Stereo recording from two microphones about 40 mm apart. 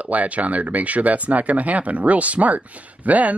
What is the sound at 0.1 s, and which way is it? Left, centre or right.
Speech, right.